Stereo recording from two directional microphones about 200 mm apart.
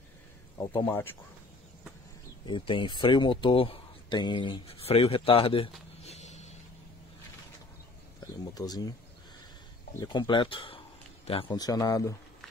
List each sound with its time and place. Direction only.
0.6 s speech: 15° left (ahead or behind)
2.4 s speech: 25° left (ahead or behind)
8.5 s speech: 20° left (ahead or behind)
9.9 s speech: 20° left (ahead or behind)